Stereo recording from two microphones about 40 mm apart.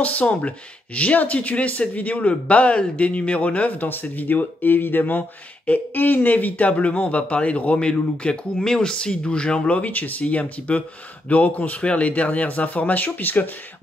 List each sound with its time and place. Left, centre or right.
0.0 s speech: left
8.5 s speech: centre; by 13.5 s left